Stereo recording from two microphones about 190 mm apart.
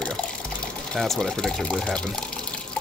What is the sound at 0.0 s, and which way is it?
Water, 5° left (ahead or behind).